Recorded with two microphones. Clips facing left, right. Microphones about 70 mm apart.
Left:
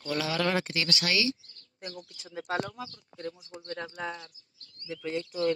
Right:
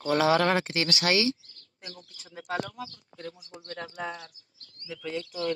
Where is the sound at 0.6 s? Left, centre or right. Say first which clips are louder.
Right 2 dB; right.